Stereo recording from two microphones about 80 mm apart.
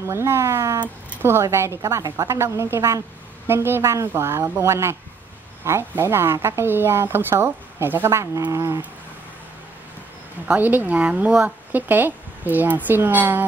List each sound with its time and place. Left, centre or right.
0.0 s speech: right
10.6 s speech: right